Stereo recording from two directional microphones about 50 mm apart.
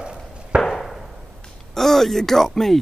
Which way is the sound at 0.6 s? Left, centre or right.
Centre.